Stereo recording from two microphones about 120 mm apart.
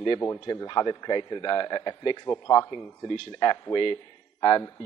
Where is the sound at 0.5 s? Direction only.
30° left (ahead or behind).